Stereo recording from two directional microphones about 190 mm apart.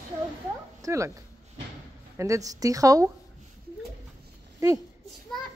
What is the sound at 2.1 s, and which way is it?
Speech, 15° right (ahead or behind).